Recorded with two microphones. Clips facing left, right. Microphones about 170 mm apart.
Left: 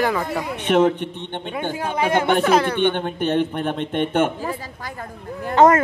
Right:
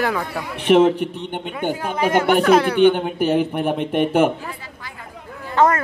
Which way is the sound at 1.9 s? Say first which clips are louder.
Right 1 dB; 20° left (ahead or behind).